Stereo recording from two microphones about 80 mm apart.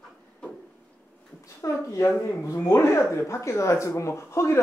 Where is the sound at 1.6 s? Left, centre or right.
Left.